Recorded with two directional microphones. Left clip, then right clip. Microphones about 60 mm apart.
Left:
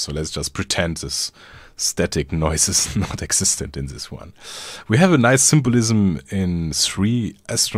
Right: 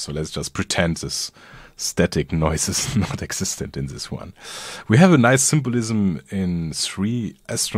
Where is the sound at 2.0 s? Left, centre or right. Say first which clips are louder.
Right 3 dB; right.